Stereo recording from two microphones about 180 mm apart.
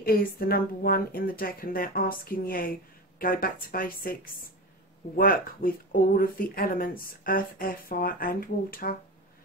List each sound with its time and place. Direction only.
0.0 s speech: 55° left (ahead or behind)